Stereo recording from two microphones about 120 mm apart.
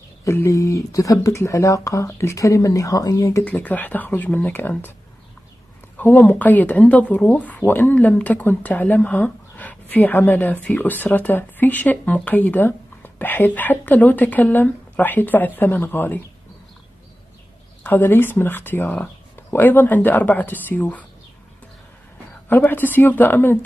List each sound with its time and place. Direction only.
0.2 s speech: 25° left (ahead or behind)
3.4 s speech: 15° left (ahead or behind)
5.9 s speech: 15° left (ahead or behind)
17.8 s speech: 15° left (ahead or behind)
22.5 s speech: 15° left (ahead or behind)